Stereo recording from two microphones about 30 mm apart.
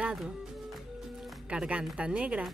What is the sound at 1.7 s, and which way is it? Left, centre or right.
Speech, right.